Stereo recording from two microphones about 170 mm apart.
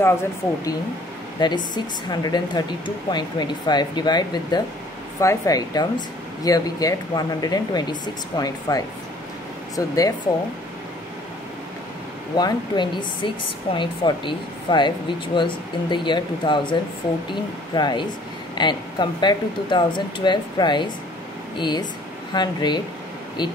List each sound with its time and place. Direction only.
0.0 s speech: 15° left (ahead or behind)
1.4 s speech: 25° left (ahead or behind)
12.4 s speech: 25° left (ahead or behind)